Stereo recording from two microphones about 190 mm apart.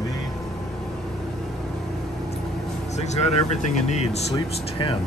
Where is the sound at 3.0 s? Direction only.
35° left (ahead or behind).